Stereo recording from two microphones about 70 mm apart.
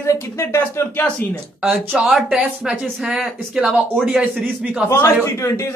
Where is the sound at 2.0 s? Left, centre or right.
Centre.